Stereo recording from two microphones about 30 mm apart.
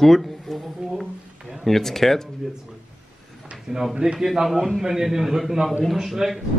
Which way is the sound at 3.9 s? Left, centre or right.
Centre.